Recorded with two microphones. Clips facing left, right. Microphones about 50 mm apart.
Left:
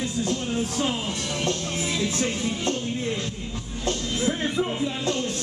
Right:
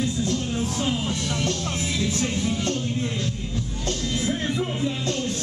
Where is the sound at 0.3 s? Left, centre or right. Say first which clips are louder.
Even; centre.